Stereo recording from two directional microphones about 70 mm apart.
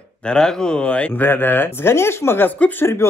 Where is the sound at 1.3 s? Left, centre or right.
Left.